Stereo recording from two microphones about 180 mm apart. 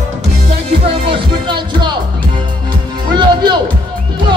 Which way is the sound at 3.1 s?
25° right (ahead or behind).